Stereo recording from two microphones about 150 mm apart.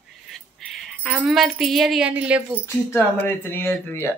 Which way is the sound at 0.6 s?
Centre (ahead or behind).